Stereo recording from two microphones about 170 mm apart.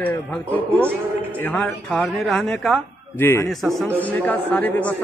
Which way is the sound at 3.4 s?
Centre (ahead or behind).